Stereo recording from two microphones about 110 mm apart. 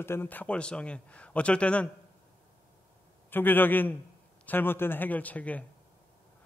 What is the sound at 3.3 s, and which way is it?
A man's voice, 20° left (ahead or behind).